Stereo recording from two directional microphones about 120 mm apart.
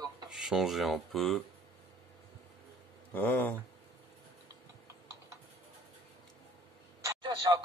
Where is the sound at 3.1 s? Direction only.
15° left (ahead or behind).